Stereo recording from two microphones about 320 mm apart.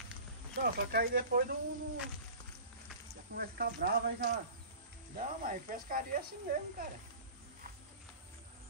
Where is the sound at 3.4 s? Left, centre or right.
Right.